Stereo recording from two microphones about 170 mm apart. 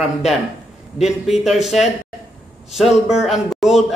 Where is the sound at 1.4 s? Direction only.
Centre (ahead or behind).